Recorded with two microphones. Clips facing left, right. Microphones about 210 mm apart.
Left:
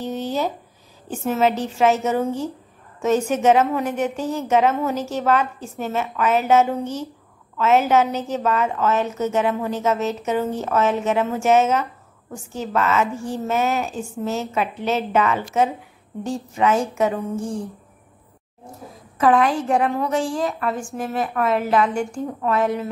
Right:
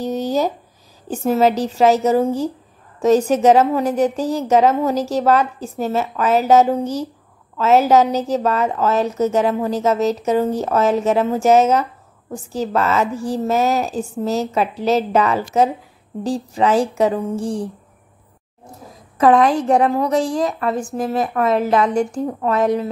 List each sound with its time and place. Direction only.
0.0 s a sound: 40° right (ahead or behind)
1.1 s a woman's voice: 35° right (ahead or behind)
19.1 s a woman's voice: 40° right (ahead or behind)